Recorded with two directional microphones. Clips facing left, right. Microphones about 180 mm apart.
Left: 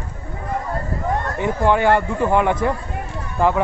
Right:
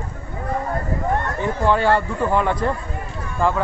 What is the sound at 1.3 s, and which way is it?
Speech, 15° left (ahead or behind).